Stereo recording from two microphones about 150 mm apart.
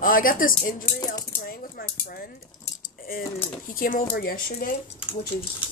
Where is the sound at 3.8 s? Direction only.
70° left (ahead or behind).